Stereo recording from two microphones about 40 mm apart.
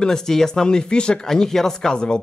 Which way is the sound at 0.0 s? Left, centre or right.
Centre.